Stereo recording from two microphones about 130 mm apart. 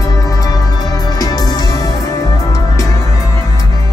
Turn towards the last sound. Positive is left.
turn(degrees=25)  # may be behind; listen again after turning